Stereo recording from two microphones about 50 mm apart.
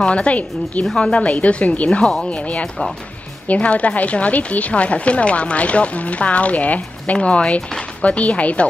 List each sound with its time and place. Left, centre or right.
0.0 s speech: left